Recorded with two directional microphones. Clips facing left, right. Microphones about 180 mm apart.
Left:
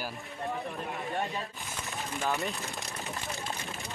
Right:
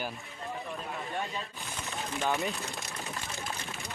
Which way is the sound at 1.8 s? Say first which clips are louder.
Right 1 dB; centre (ahead or behind).